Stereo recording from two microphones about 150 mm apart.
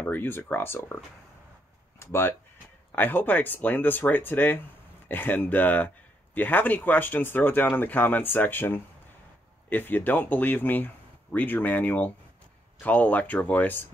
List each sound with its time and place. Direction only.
0.0 s speech: 15° left (ahead or behind)
2.0 s speech: 15° left (ahead or behind)